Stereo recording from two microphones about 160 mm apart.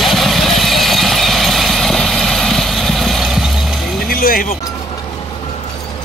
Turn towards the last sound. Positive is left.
turn(degrees=65)  # may be behind; listen again after turning